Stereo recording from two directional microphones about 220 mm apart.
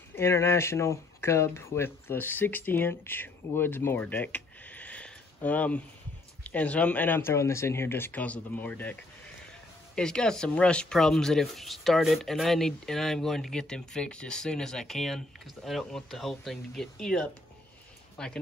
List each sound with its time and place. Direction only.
0.1 s speech: 10° left (ahead or behind)
9.9 s speech: 5° left (ahead or behind)